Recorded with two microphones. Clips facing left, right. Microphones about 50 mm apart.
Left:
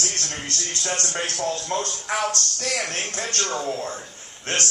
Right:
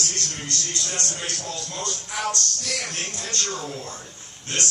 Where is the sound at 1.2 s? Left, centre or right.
Left.